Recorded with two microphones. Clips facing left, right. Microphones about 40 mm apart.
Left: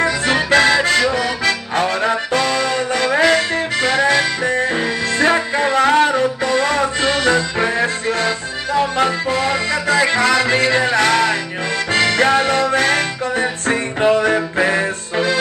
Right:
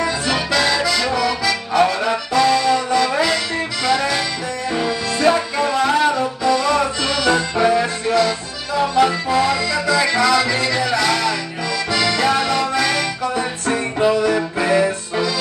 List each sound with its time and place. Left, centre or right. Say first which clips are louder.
0.0 s accordion: left 3 dB; left
3.8 s music: left 3 dB; left